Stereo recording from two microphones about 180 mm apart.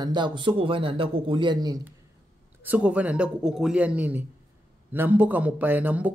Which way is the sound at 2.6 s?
10° right (ahead or behind).